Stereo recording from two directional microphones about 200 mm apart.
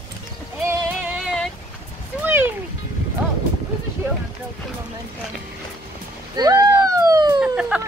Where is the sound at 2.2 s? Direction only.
10° right (ahead or behind).